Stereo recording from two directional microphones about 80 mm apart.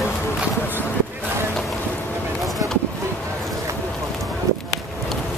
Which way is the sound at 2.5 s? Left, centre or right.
Centre.